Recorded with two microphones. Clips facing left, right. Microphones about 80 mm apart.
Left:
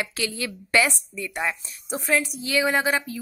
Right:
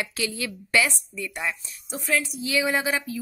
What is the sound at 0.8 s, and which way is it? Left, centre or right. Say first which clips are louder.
Speech: left 2 dB; centre.